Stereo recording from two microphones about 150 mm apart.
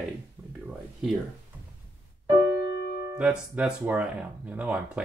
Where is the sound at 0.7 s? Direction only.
5° right (ahead or behind).